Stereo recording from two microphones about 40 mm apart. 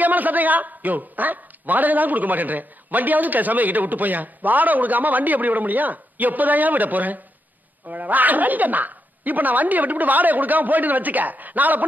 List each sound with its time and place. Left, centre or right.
0.0 s a man's voice: right